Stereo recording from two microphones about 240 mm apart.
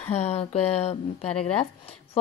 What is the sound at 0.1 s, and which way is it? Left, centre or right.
A woman's voice, left.